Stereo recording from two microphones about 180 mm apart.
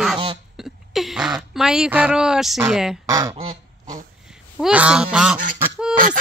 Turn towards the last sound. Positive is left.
turn(degrees=-5)  # may be behind; listen again after turning